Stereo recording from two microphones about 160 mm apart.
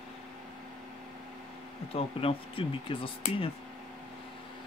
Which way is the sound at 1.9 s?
35° left (ahead or behind).